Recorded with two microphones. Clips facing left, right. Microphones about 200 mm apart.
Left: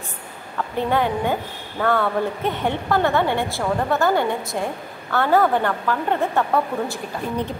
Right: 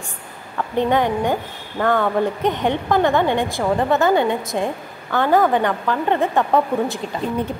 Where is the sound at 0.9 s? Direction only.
15° right (ahead or behind).